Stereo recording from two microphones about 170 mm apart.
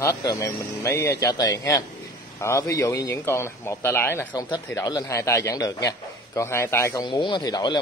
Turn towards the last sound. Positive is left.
turn(degrees=25)  # may be behind; listen again after turning